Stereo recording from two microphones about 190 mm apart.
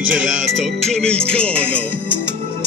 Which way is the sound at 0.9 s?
5° left (ahead or behind).